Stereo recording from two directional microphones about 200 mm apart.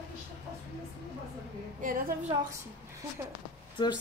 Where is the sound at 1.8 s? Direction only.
45° right (ahead or behind).